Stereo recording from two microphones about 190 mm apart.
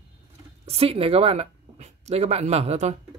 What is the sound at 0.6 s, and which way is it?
Speech, 30° right (ahead or behind).